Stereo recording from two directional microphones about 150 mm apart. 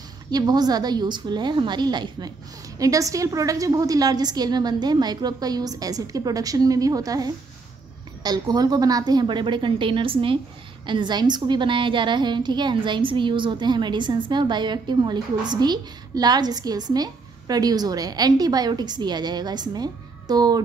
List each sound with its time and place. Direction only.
0.3 s a woman's voice: 25° right (ahead or behind)